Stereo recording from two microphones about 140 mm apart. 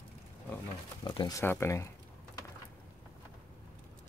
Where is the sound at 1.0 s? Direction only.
35° left (ahead or behind).